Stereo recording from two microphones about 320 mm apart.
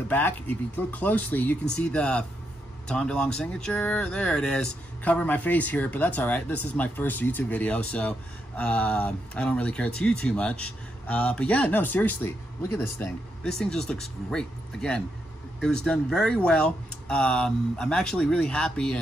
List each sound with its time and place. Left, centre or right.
0.1 s speech: centre